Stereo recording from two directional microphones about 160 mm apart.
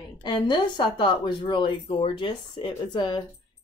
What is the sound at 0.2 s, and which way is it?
Speech, 30° left (ahead or behind).